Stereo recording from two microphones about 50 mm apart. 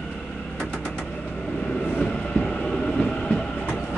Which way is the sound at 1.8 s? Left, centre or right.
Left.